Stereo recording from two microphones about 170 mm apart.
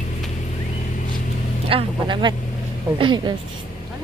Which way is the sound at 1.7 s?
30° right (ahead or behind).